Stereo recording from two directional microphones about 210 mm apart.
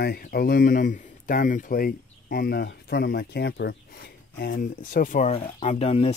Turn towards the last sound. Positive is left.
turn(degrees=30)  # may be behind; listen again after turning